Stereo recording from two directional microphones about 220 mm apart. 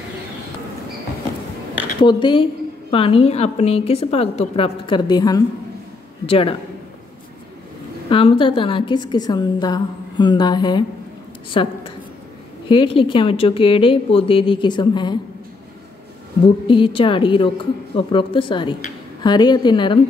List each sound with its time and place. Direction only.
2.0 s a woman's voice: 20° left (ahead or behind)
8.1 s a woman's voice: 25° left (ahead or behind)
16.6 s a woman's voice: 20° left (ahead or behind)